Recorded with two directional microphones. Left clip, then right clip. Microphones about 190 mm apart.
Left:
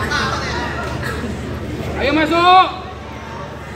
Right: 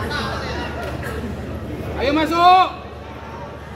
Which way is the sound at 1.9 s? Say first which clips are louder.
Left 2 dB; 60° right (ahead or behind).